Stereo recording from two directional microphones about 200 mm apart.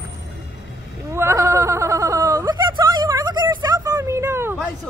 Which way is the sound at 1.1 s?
15° right (ahead or behind).